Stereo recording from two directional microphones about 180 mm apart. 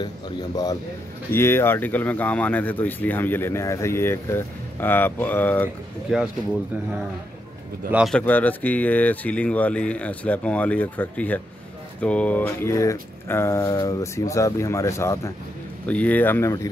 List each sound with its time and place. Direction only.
0.0 s a man's voice: 20° left (ahead or behind)
6.0 s speech: 5° right (ahead or behind)
7.9 s speech: 5° right (ahead or behind)
8.2 s speech: 10° left (ahead or behind)